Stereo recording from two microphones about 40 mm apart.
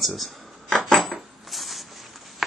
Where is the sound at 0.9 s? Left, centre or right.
Centre.